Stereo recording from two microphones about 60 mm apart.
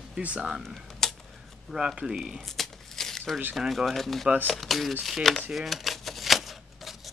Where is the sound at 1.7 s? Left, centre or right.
Centre.